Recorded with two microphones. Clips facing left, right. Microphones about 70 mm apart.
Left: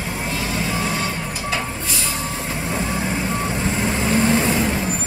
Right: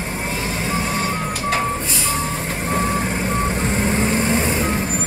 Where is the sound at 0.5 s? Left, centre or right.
Right.